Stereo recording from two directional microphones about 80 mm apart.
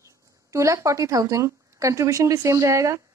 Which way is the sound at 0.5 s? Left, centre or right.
Right.